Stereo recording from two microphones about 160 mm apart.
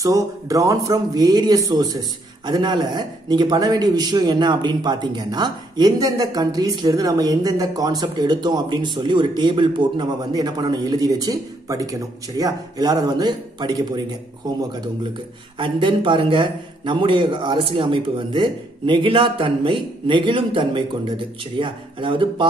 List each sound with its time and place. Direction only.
0.0 s a man's voice: 20° right (ahead or behind)